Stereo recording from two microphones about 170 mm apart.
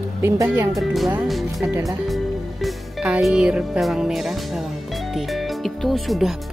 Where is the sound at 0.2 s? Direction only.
15° right (ahead or behind).